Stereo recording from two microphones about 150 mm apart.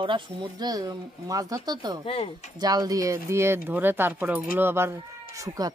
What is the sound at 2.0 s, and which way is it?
Speech, 40° left (ahead or behind).